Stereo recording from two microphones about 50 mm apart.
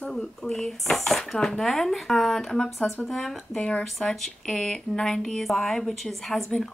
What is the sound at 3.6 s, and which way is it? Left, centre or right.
Speech, left.